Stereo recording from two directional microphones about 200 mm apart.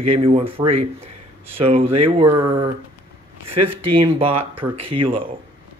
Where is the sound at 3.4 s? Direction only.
25° right (ahead or behind).